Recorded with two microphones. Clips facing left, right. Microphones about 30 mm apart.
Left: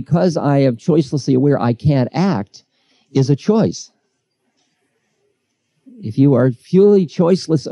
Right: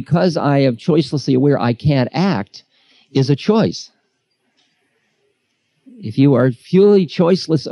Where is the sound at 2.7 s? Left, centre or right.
Right.